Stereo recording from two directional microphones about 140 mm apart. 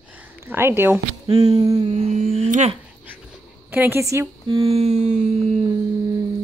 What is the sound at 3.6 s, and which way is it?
Speech, 15° right (ahead or behind).